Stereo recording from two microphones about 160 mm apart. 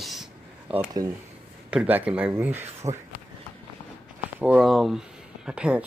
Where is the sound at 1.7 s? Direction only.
10° right (ahead or behind).